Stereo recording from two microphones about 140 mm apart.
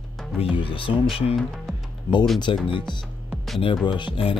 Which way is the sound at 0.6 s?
40° left (ahead or behind).